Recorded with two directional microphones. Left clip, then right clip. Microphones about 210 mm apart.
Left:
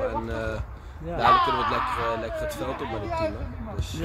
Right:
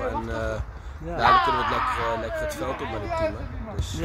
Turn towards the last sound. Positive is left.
turn(degrees=-5)  # may be behind; listen again after turning